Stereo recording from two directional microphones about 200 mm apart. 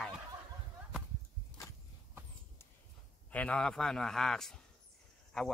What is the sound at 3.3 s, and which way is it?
A man's voice, 5° left (ahead or behind).